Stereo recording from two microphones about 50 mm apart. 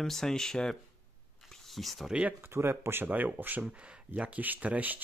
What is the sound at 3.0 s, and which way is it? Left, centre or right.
Speech, right.